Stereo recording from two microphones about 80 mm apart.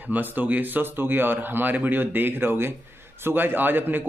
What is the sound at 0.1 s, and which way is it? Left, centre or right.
A man's voice, right.